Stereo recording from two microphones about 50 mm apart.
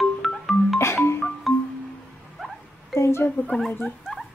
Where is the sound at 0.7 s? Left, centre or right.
Left.